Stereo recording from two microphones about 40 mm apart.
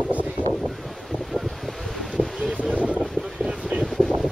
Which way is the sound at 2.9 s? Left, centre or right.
Right.